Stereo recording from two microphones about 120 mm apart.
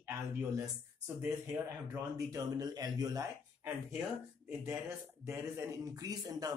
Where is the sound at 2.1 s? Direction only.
30° right (ahead or behind).